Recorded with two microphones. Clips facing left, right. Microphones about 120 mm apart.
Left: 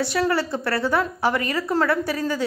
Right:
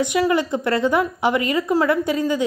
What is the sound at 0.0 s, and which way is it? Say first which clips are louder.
A woman's voice: right 3 dB; 15° right (ahead or behind).